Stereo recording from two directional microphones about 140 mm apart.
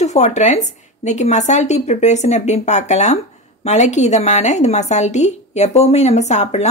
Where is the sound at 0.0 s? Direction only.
55° left (ahead or behind).